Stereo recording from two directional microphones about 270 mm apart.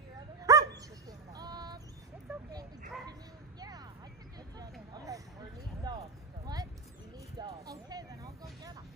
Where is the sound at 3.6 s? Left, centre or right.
Centre.